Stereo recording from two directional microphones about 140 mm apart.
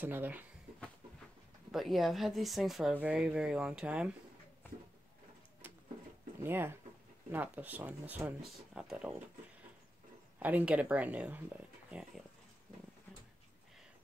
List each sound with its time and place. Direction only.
0.0 s speech: 10° right (ahead or behind)
1.7 s speech: centre (ahead or behind)
5.6 s a sound: 15° right (ahead or behind)
6.4 s speech: 15° right (ahead or behind)
10.4 s speech: 10° right (ahead or behind)